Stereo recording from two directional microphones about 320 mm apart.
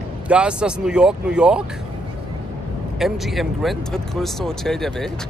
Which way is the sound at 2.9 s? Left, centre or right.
Centre.